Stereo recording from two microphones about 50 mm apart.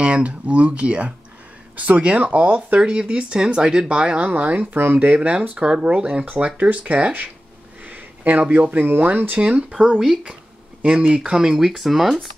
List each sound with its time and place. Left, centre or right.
0.0 s speech: right
4.2 s speech: right
7.8 s a sound: right
8.6 s speech: right
9.4 s speech: right
10.8 s speech: right; by 12.3 s centre